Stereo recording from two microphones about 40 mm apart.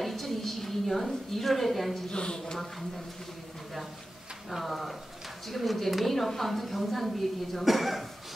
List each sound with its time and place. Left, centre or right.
0.0 s a sound: centre
2.0 s speech: left
4.5 s a woman's voice: centre